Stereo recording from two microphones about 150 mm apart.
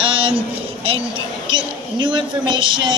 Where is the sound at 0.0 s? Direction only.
35° right (ahead or behind).